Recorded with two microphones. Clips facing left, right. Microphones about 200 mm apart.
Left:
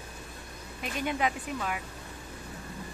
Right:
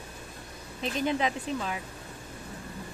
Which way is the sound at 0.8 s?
25° right (ahead or behind).